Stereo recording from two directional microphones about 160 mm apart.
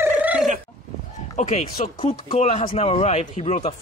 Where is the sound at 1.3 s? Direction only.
50° left (ahead or behind).